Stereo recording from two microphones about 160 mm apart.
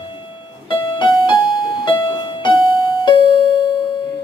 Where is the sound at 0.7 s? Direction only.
30° left (ahead or behind).